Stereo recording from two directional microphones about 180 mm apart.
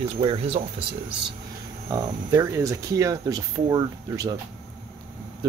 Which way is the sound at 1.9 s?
15° right (ahead or behind).